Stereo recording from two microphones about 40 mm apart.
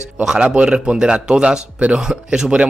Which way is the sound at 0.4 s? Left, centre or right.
Right.